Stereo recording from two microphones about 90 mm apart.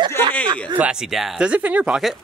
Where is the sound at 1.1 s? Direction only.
Centre (ahead or behind).